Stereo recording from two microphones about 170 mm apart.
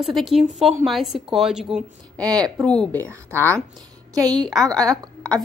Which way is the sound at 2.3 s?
20° right (ahead or behind).